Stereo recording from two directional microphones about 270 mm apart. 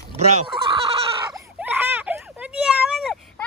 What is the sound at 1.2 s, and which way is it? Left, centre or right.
Baby cry, centre.